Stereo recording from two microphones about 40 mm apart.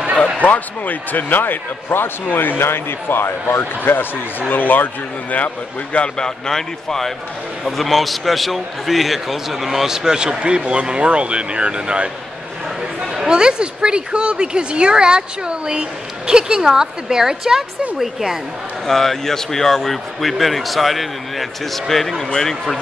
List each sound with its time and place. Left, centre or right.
0.4 s speech: left
2.6 s speech: left
4.5 s speech: left
6.1 s a man's voice: centre; by 12.1 s right
13.0 s a sound: centre
13.3 s a woman's voice: right
18.9 s speech: centre